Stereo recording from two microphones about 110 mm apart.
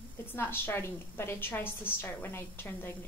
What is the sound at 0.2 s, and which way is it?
A woman's voice, 20° left (ahead or behind).